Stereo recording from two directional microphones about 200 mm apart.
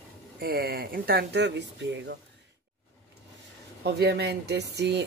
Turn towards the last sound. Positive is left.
turn(degrees=-55)  # may be behind; listen again after turning